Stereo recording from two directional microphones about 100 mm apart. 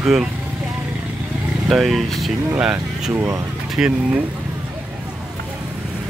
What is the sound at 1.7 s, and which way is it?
Speech, centre (ahead or behind).